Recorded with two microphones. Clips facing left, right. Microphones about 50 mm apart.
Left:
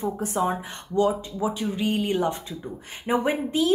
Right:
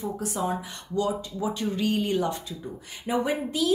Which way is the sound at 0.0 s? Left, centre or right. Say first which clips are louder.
Left 4 dB; left.